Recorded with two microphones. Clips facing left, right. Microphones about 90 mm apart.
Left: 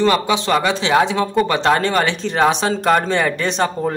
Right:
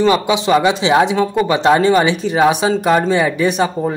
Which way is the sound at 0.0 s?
15° right (ahead or behind).